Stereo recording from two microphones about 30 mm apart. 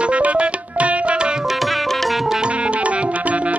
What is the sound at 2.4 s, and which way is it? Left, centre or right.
Music, right.